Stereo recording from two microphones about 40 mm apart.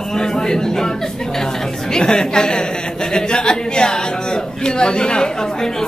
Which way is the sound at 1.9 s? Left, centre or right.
Centre.